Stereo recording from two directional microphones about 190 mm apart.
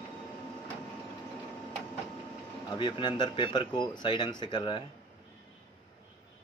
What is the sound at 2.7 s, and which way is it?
Speech, 25° left (ahead or behind).